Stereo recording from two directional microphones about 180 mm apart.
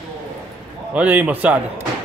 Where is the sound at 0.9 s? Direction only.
5° right (ahead or behind).